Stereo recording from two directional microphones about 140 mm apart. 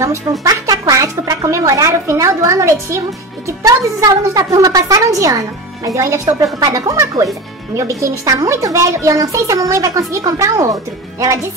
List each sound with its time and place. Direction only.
0.0 s a woman's voice: 25° right (ahead or behind)